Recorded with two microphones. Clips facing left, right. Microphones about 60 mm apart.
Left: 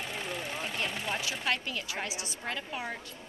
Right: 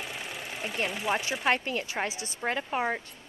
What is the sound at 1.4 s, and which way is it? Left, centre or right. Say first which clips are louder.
A woman's voice: right 5 dB; right.